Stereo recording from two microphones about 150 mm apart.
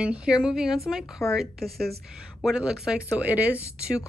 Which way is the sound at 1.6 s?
90° right.